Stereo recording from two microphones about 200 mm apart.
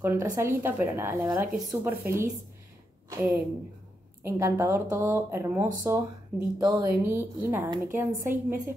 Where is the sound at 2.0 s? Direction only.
45° right (ahead or behind).